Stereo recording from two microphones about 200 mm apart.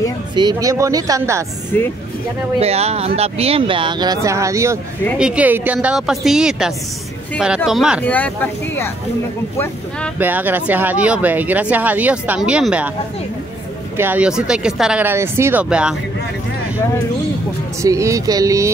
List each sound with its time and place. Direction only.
0.4 s speech: 20° right (ahead or behind)
2.6 s a woman's voice: 30° right (ahead or behind); by 8.0 s 5° right (ahead or behind)
8.0 s speech: 10° left (ahead or behind)
10.1 s speech: 10° right (ahead or behind)
13.9 s speech: 10° right (ahead or behind)
17.8 s speech: 15° right (ahead or behind)